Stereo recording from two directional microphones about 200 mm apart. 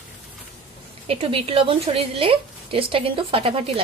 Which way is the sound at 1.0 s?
30° right (ahead or behind).